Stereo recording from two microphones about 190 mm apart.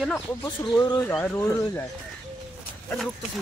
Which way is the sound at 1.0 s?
5° left (ahead or behind).